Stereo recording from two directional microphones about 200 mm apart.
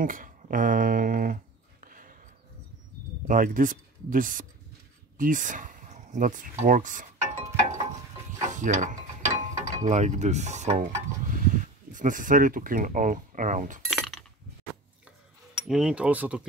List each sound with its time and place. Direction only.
0.0 s a sound: 45° right (ahead or behind)
3.3 s speech: 40° right (ahead or behind)
5.1 s a sound: 40° right (ahead or behind)
8.3 s mechanisms: 35° right (ahead or behind)
11.9 s speech: 40° right (ahead or behind)
13.8 s chink: centre (ahead or behind)
15.6 s speech: 5° right (ahead or behind)